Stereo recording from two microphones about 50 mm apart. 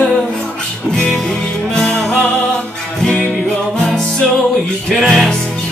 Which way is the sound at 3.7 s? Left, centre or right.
Centre.